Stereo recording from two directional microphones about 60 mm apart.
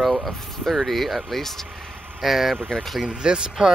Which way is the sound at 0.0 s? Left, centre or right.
Centre.